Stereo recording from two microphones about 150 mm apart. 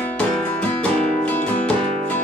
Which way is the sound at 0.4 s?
5° left (ahead or behind).